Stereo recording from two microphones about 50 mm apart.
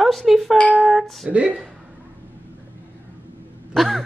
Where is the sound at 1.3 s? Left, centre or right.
Right.